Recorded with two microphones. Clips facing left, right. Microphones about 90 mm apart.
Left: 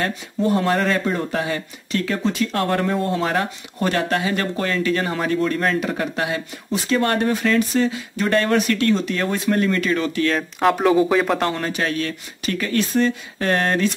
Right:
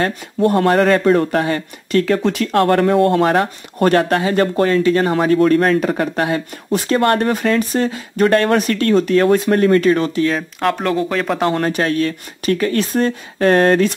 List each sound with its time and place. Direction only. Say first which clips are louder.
0.4 s speech: right 6 dB; 60° right (ahead or behind); by 5.1 s 35° right (ahead or behind)
5.1 s speech: right 8 dB; 50° right (ahead or behind)
10.2 s speech: right 1 dB; centre (ahead or behind)
11.5 s speech: right 6 dB; 45° right (ahead or behind)